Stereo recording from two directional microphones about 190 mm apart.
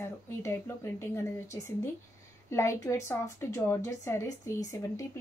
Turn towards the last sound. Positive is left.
turn(degrees=15)  # may be behind; listen again after turning